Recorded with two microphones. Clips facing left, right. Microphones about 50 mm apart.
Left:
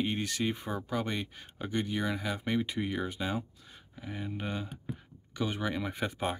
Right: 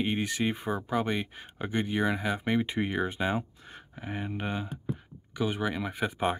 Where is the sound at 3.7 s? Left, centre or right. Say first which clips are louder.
Right 4 dB; right; by 6.2 s centre.